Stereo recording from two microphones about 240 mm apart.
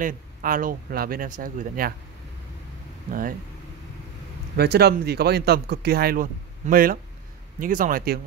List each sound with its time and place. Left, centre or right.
0.0 s speech: right
3.1 s speech: right
4.6 s speech: right